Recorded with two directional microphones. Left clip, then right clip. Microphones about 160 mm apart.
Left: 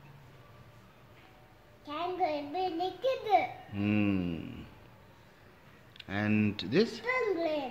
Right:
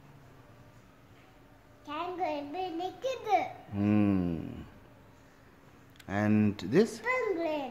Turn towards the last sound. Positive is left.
turn(degrees=15)  # may be behind; listen again after turning